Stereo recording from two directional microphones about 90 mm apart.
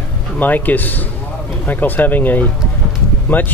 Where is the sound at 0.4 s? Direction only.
20° left (ahead or behind).